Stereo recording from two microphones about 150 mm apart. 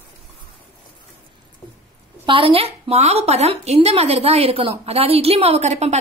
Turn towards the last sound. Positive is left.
turn(degrees=-50)  # may be behind; listen again after turning